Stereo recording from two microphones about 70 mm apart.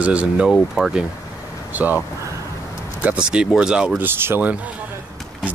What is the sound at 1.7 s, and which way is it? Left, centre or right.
Speech, right.